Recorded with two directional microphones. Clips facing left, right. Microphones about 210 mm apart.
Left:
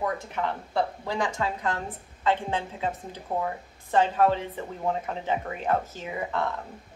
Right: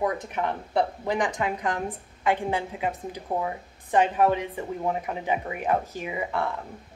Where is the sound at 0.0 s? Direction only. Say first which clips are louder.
Right 2 dB; 20° right (ahead or behind).